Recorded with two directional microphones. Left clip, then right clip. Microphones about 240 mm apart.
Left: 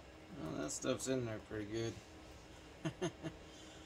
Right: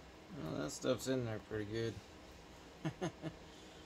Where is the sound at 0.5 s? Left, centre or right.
Right.